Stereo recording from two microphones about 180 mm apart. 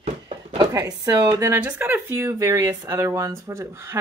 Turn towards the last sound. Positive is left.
turn(degrees=-15)  # may be behind; listen again after turning